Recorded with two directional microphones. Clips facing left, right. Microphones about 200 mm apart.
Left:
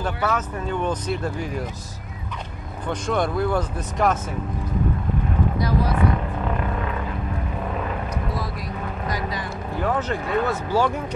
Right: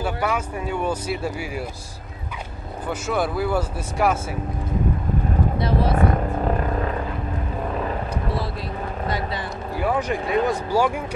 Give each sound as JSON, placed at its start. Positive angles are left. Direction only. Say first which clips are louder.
{"t": 0.0, "sound": "speech", "louder": "even", "side_deg": -10}
{"t": 2.9, "sound": "speech", "louder": "left 1 dB", "side_deg": -5}
{"t": 5.6, "sound": "vehicle", "louder": "right 2 dB", "side_deg": -25}
{"t": 5.9, "sound": "vehicle", "louder": "right 2 dB", "side_deg": -45}
{"t": 9.8, "sound": "speech", "louder": "right 1 dB", "side_deg": -10}